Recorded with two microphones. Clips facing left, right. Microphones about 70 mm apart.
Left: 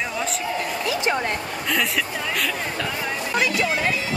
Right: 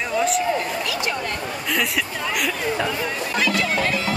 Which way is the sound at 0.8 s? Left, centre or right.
Left.